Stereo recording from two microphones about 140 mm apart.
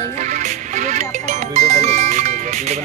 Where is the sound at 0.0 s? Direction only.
60° right (ahead or behind).